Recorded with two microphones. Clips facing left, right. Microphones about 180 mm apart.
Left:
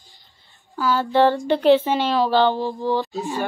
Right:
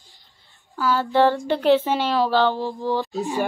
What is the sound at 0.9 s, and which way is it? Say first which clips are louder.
Speech: left 1 dB; centre (ahead or behind).